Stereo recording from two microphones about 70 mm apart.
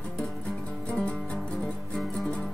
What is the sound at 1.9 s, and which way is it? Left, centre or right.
Music, centre.